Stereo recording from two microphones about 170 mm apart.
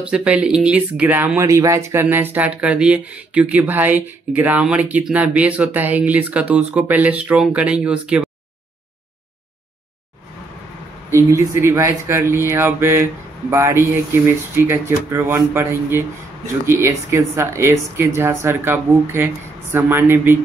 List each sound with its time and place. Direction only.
0.0 s speech: 5° right (ahead or behind)
11.1 s speech: 15° right (ahead or behind)